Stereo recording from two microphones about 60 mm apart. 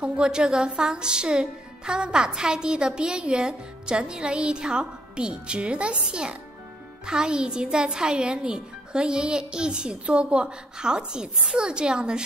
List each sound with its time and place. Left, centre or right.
0.0 s a woman's voice: centre